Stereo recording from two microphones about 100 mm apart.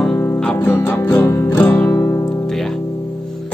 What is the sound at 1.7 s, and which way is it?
Music, 5° left (ahead or behind).